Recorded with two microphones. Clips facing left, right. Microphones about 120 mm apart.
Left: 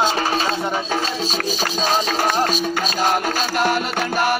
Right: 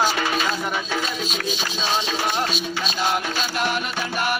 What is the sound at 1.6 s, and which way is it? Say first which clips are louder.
Music: left 7 dB; 40° left (ahead or behind).